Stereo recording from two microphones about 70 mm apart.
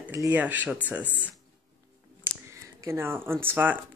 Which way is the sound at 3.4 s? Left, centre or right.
Right.